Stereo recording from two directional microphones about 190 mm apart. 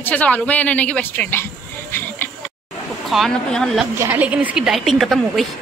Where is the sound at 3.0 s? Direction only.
Centre (ahead or behind).